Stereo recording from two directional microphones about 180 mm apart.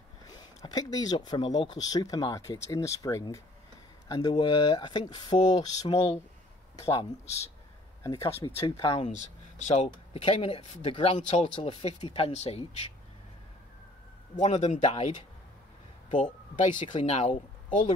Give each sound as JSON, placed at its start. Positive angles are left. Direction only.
{"t": 0.3, "sound": "speech", "side_deg": 20}
{"t": 8.0, "sound": "speech", "side_deg": 15}
{"t": 8.5, "sound": "speech", "side_deg": 30}
{"t": 14.4, "sound": "speech", "side_deg": 40}